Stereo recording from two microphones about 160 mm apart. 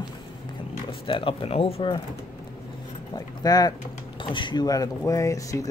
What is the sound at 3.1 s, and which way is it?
Speech, 25° left (ahead or behind).